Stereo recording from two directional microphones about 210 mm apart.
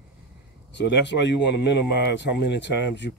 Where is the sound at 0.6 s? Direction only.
55° left (ahead or behind).